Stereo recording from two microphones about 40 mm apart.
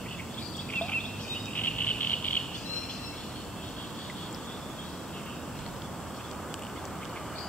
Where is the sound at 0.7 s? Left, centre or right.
Left.